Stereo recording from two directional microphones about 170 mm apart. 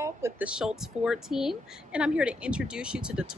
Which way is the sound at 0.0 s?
10° right (ahead or behind).